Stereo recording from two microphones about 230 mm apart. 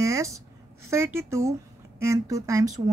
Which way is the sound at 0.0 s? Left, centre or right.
Centre.